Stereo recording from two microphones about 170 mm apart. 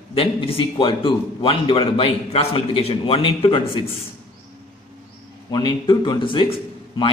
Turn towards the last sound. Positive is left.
turn(degrees=30)  # may be behind; listen again after turning